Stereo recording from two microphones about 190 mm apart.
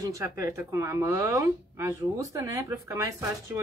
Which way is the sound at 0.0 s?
15° right (ahead or behind).